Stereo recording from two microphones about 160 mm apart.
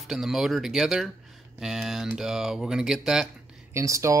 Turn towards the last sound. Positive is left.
turn(degrees=-20)  # may be behind; listen again after turning